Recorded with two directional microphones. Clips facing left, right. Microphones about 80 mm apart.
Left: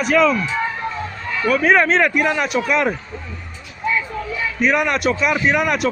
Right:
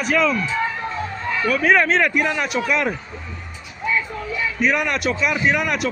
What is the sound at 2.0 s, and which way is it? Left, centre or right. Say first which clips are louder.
Speech: left 2 dB; left.